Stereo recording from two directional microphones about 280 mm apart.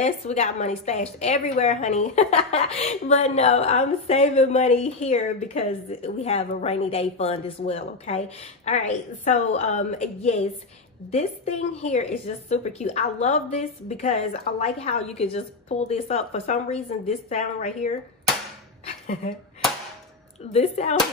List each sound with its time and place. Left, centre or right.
0.0 s a woman's voice: left
18.9 s a sound: left
20.5 s a woman's voice: left